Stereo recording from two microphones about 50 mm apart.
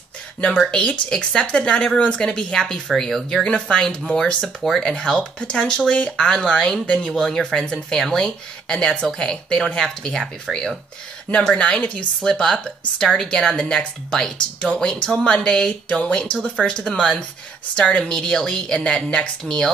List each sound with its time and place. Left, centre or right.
0.7 s a woman's voice: centre
3.4 s a woman's voice: centre
7.2 s a woman's voice: centre
11.5 s speech: left
12.2 s a woman's voice: centre